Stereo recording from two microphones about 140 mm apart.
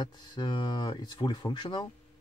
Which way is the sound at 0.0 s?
30° left (ahead or behind).